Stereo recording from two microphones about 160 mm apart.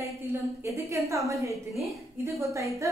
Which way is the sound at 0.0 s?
20° right (ahead or behind).